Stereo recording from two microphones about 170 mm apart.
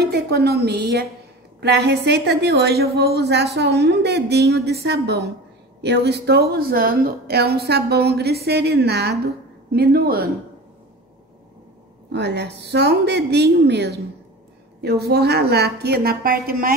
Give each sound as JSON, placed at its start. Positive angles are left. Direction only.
{"t": 0.0, "sound": "a woman's voice", "side_deg": -70}
{"t": 12.1, "sound": "a woman's voice", "side_deg": -80}